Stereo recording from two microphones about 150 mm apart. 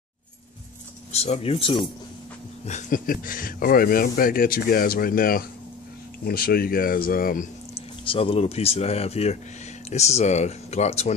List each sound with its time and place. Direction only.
1.1 s speech: 45° left (ahead or behind)
2.6 s speech: 55° left (ahead or behind); by 5.5 s 75° left (ahead or behind)
6.2 s speech: 85° left
8.1 s speech: 40° left (ahead or behind)